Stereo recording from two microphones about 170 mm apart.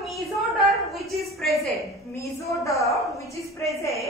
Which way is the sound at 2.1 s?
15° left (ahead or behind).